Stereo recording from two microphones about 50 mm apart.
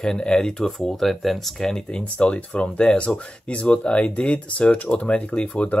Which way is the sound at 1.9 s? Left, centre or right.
Left.